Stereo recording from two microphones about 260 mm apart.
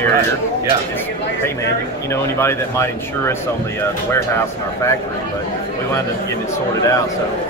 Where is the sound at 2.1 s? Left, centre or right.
Centre.